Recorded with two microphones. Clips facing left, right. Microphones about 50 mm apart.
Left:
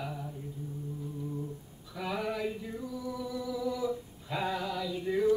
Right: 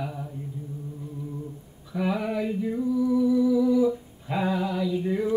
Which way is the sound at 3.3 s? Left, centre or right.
Centre.